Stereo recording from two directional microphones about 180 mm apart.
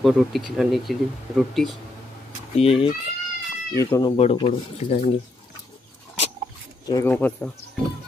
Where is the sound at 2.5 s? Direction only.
30° left (ahead or behind).